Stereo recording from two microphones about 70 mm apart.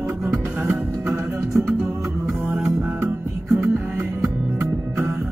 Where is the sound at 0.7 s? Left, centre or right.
Centre.